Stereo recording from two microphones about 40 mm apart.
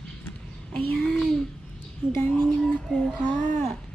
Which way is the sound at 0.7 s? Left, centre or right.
Centre.